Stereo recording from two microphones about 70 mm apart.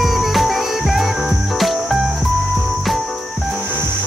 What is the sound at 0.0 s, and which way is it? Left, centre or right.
Music, centre.